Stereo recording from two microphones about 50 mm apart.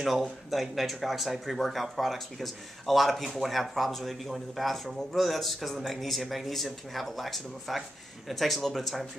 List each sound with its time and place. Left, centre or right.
0.0 s speech: centre